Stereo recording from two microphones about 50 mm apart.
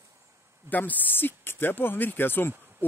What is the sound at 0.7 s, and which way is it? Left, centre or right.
Speech, left.